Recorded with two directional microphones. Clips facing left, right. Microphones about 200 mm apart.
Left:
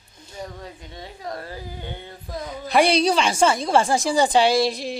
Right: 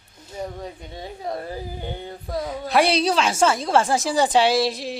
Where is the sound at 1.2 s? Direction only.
20° right (ahead or behind).